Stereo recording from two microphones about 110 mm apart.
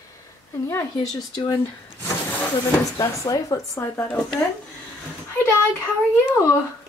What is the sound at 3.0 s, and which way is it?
Speech, 35° left (ahead or behind).